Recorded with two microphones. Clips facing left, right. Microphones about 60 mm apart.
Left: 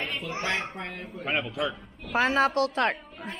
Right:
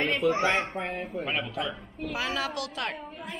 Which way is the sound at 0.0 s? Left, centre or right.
Right.